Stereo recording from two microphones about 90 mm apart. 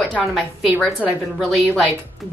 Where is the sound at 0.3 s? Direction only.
Centre (ahead or behind).